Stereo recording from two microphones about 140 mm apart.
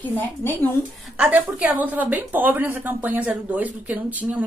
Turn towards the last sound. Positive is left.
turn(degrees=-10)  # may be behind; listen again after turning